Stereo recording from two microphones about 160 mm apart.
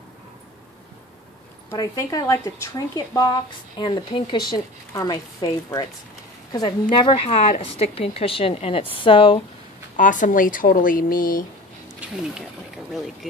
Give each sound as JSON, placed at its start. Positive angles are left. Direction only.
{"t": 1.7, "sound": "a woman's voice", "side_deg": 20}
{"t": 9.9, "sound": "speech", "side_deg": 55}
{"t": 12.4, "sound": "speech", "side_deg": 0}